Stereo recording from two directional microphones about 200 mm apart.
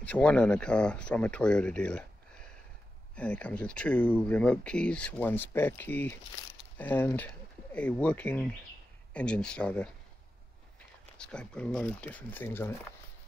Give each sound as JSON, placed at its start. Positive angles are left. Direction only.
{"t": 0.0, "sound": "speech", "side_deg": 5}
{"t": 6.4, "sound": "speech", "side_deg": 20}
{"t": 6.8, "sound": "speech", "side_deg": 10}